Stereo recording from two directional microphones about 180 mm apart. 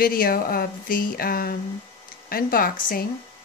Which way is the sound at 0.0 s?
55° left (ahead or behind).